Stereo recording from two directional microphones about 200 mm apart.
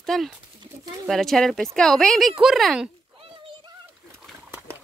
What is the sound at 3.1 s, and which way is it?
Children playing, 25° right (ahead or behind).